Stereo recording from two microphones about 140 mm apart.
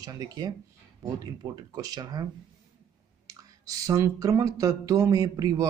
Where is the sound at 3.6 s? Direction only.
25° right (ahead or behind).